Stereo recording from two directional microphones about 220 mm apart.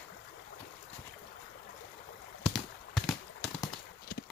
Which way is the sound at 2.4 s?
Centre (ahead or behind).